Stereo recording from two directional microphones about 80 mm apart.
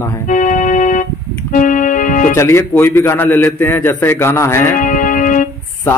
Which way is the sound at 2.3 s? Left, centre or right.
Left.